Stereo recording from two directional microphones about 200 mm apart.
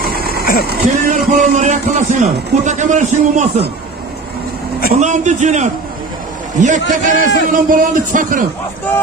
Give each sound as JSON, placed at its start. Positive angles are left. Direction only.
{"t": 0.0, "sound": "a sound", "side_deg": -50}
{"t": 0.7, "sound": "a man's voice", "side_deg": -35}
{"t": 4.9, "sound": "a man's voice", "side_deg": -35}